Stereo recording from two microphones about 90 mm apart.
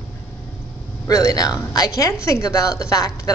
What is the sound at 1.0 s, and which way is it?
A woman's voice, 40° left (ahead or behind).